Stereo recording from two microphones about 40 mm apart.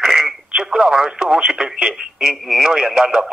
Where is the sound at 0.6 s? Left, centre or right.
Centre.